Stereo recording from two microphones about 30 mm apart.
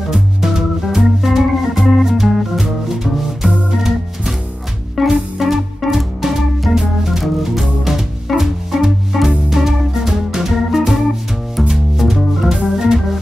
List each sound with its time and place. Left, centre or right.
0.1 s organ: centre
5.0 s music: centre
5.9 s organ: centre
8.4 s music: centre
12.7 s organ: centre